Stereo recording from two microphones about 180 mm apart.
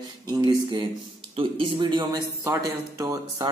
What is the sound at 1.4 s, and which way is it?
A man's voice, 30° right (ahead or behind).